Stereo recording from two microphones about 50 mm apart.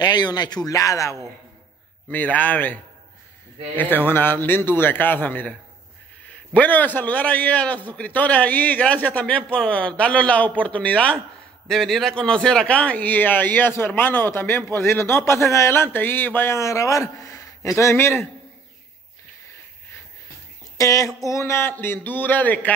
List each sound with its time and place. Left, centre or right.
0.8 s a sound: left
2.0 s a man's voice: left
11.1 s a man's voice: centre
12.2 s a man's voice: centre
12.7 s a man's voice: left
13.7 s a man's voice: left
15.7 s a man's voice: left
16.5 s speech: left
17.9 s a man's voice: left
20.8 s a sound: left
21.6 s a man's voice: left